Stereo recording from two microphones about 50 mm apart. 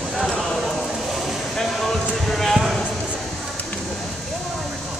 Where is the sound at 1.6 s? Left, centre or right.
Centre.